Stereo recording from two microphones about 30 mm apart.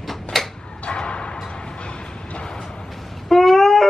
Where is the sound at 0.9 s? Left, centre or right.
Left.